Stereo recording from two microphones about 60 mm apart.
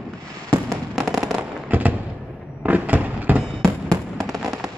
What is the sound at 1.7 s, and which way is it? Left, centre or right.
Fireworks, right.